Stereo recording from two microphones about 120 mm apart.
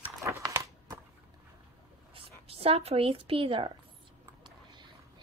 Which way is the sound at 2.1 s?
55° right (ahead or behind).